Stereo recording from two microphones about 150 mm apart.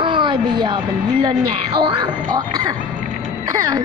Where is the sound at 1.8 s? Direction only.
30° right (ahead or behind).